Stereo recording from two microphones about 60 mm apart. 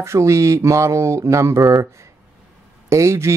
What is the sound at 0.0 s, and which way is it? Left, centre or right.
Speech, right.